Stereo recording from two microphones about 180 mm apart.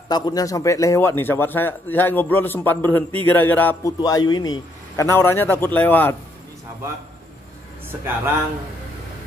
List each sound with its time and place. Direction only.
0.1 s a man's voice: 20° left (ahead or behind)
4.0 s a man's voice: 20° left (ahead or behind)